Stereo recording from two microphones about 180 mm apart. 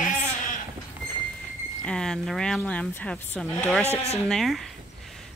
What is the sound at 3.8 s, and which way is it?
Speech, 35° left (ahead or behind).